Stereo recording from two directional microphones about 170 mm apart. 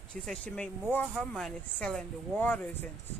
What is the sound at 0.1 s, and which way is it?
Speech, 5° left (ahead or behind).